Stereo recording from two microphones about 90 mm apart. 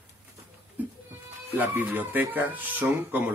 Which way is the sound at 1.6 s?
20° right (ahead or behind).